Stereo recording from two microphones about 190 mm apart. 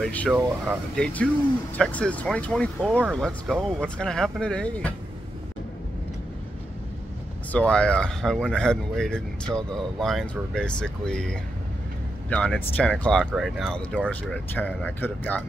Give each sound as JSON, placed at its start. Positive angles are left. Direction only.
{"t": 0.0, "sound": "speech", "side_deg": 5}
{"t": 7.5, "sound": "speech", "side_deg": 5}